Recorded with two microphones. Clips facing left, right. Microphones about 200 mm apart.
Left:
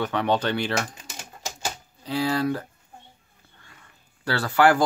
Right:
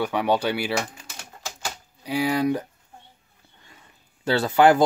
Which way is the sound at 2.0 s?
15° right (ahead or behind).